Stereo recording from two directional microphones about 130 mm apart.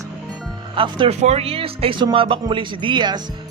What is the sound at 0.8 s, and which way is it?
Speech, 45° right (ahead or behind).